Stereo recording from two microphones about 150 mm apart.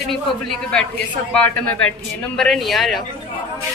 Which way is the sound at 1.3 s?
10° left (ahead or behind).